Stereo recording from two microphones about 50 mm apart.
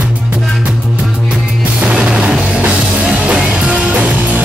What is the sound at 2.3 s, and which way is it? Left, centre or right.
Music, centre.